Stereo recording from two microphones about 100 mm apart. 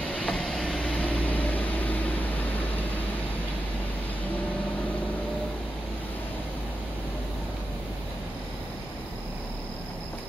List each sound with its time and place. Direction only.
0.1 s vehicle: 10° left (ahead or behind)